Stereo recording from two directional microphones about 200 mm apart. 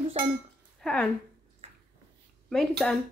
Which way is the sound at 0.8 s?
5° left (ahead or behind).